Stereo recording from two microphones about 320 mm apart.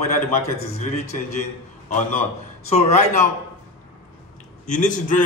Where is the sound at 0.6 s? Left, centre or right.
Left.